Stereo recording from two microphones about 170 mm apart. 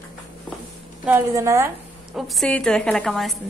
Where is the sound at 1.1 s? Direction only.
15° right (ahead or behind).